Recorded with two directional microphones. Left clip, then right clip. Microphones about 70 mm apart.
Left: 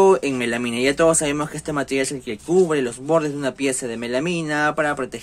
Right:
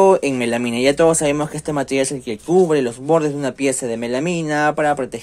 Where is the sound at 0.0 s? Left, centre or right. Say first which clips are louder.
Right 2 dB; right.